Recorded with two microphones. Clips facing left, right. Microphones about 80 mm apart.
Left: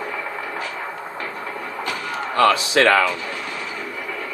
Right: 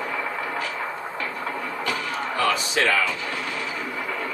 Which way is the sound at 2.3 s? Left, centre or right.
Left.